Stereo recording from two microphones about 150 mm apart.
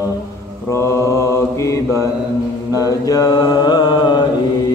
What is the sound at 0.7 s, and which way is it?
Mantra, 20° left (ahead or behind).